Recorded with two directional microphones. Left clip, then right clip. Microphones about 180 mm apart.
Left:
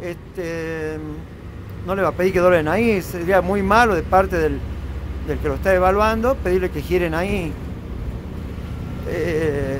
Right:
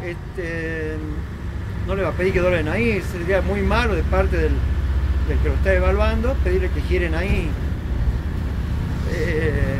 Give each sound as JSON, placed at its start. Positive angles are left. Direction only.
{"t": 0.0, "sound": "vehicle", "side_deg": 30}
{"t": 1.9, "sound": "speech", "side_deg": 30}
{"t": 5.6, "sound": "speech", "side_deg": 35}
{"t": 9.1, "sound": "a sound", "side_deg": 35}